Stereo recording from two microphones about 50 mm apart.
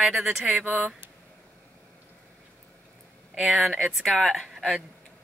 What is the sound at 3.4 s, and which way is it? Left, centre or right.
Speech, centre.